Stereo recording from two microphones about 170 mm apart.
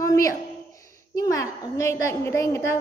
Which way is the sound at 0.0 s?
20° left (ahead or behind).